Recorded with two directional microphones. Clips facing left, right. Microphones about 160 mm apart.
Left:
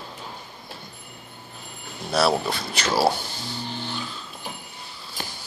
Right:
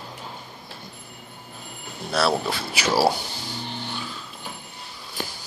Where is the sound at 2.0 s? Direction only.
Centre (ahead or behind).